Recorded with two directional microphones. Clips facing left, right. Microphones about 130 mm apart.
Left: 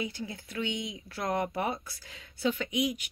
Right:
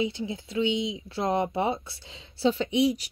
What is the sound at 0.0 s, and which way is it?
Speech, 20° right (ahead or behind).